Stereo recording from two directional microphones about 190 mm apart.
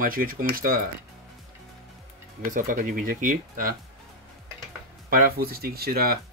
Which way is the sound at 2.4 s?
45° right (ahead or behind).